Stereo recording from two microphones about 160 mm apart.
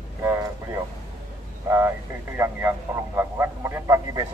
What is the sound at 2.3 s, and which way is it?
Speech, 15° right (ahead or behind).